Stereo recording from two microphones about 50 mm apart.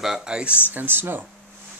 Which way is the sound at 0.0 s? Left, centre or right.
Centre.